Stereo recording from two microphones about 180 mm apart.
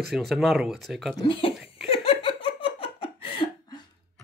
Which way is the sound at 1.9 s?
30° left (ahead or behind).